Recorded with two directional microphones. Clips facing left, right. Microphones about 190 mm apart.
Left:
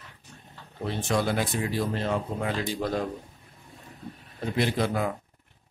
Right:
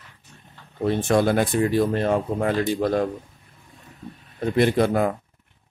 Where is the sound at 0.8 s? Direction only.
50° right (ahead or behind).